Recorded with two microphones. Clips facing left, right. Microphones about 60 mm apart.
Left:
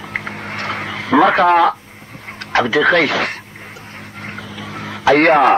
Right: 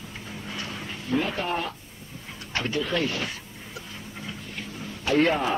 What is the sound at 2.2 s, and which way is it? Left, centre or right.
Speech, left.